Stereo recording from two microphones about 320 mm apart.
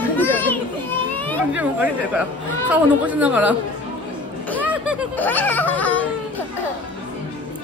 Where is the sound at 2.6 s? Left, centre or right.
Centre.